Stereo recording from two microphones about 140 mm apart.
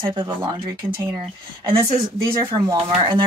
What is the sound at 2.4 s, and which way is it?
Speech, 35° right (ahead or behind).